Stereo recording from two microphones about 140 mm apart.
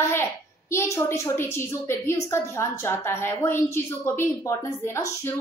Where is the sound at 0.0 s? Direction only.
15° left (ahead or behind).